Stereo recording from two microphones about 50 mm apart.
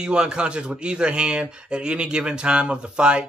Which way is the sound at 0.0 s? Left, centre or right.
Centre.